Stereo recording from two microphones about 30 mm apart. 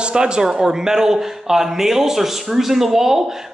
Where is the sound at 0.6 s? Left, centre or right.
Centre.